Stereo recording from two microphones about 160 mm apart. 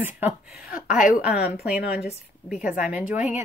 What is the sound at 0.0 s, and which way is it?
A woman's voice, 10° right (ahead or behind).